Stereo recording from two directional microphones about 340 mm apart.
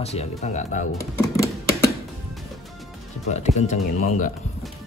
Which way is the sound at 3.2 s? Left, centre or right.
Centre.